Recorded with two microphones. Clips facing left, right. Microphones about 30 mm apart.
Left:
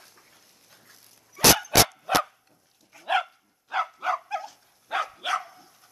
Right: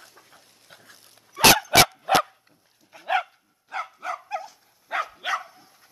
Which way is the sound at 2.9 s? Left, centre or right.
Right.